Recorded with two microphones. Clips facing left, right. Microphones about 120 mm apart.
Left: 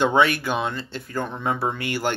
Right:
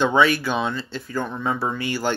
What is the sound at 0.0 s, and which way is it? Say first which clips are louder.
Speech: right 1 dB; 55° left (ahead or behind).